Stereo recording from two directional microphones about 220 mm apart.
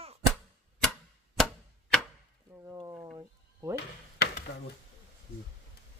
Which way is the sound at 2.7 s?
15° right (ahead or behind).